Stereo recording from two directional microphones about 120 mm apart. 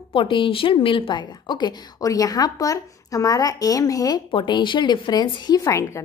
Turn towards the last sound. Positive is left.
turn(degrees=25)  # may be behind; listen again after turning